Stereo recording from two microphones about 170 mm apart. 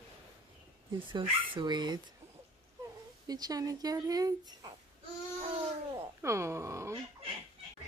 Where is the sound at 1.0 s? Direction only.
30° right (ahead or behind).